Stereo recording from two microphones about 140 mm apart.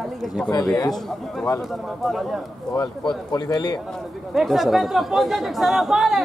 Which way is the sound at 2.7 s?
30° left (ahead or behind).